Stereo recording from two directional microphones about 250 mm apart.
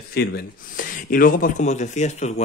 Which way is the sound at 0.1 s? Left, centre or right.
Left.